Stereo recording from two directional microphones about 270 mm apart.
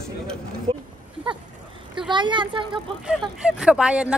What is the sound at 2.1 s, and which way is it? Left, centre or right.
Speech, centre.